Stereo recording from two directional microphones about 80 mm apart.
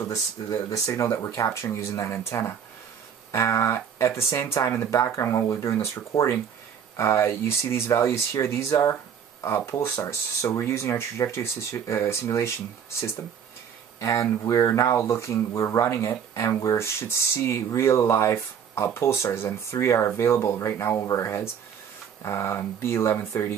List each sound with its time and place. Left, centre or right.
0.1 s speech: left
10.0 s speech: left
13.9 s speech: left